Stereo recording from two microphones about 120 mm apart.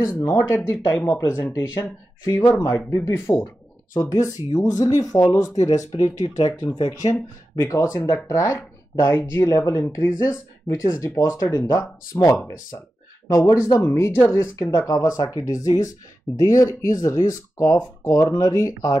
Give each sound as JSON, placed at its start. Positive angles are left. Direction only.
{"t": 0.0, "sound": "speech", "side_deg": 25}